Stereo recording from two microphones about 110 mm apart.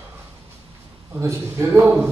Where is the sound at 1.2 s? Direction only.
25° right (ahead or behind).